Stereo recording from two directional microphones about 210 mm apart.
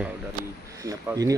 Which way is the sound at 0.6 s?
15° right (ahead or behind).